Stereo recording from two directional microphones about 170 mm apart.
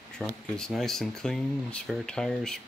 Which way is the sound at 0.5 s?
5° left (ahead or behind).